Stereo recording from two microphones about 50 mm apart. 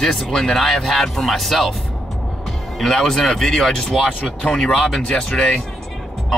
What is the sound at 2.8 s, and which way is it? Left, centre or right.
A man's voice, centre.